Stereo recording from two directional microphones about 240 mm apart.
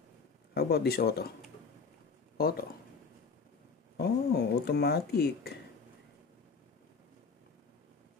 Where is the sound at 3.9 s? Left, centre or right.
Left.